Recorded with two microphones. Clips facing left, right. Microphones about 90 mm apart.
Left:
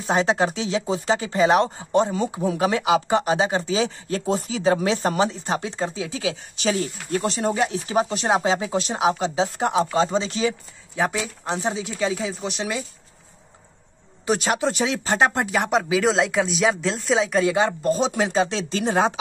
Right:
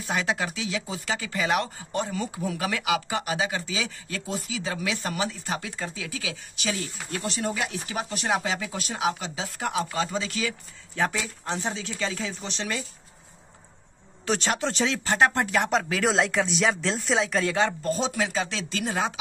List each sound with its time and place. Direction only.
0.0 s speech: 30° left (ahead or behind)
11.0 s speech: 15° left (ahead or behind)
14.2 s speech: 10° left (ahead or behind); by 19.1 s 30° left (ahead or behind)